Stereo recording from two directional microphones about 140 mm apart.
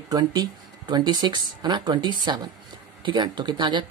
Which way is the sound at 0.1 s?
30° right (ahead or behind).